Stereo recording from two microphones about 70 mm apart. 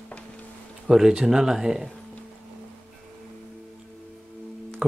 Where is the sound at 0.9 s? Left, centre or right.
Centre.